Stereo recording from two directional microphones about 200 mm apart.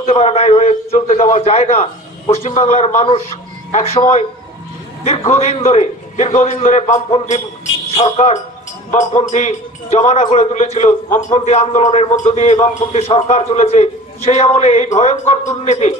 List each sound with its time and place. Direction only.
0.0 s a man's voice: 30° left (ahead or behind)